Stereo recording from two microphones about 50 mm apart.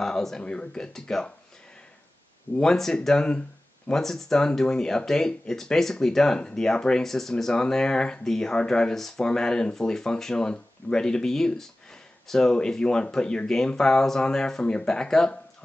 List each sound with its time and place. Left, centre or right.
0.0 s speech: centre
2.5 s speech: centre
4.0 s speech: centre